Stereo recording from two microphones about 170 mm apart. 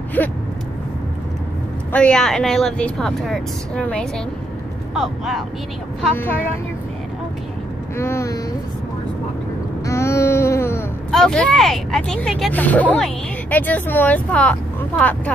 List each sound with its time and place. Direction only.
0.2 s speech: 10° left (ahead or behind)
1.9 s a woman's voice: 5° left (ahead or behind)
6.1 s speech: 10° left (ahead or behind)
8.0 s speech: 15° left (ahead or behind)
9.8 s baby cry: 15° left (ahead or behind)
11.1 s speech: 5° left (ahead or behind)